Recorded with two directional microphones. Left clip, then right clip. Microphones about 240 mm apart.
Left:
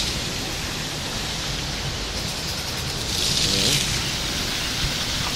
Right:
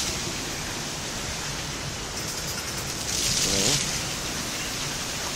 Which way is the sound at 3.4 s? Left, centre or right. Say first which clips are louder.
Left 3 dB; right.